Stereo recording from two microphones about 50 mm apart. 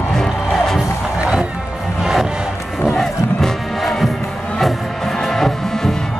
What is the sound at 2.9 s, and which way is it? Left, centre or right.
Music, centre.